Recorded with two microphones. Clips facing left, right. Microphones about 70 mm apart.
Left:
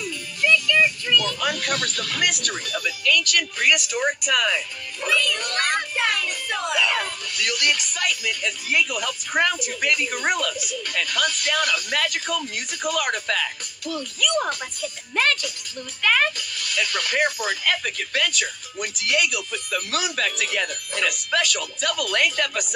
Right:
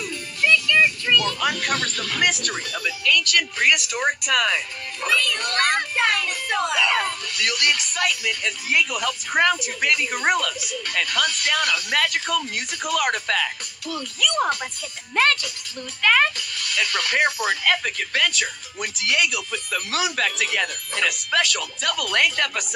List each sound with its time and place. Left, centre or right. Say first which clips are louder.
0.0 s music: right 1 dB; right
0.7 s speech: right 1 dB; right